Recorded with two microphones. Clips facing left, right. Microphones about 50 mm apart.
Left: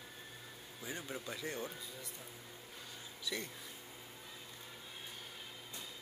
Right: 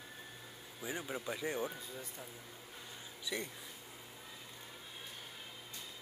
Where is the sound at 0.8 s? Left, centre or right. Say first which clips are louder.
Right 3 dB; centre.